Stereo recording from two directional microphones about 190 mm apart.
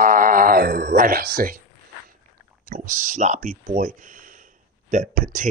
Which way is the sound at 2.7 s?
45° right (ahead or behind).